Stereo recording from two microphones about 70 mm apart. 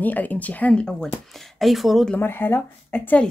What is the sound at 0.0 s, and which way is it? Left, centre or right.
Speech, left.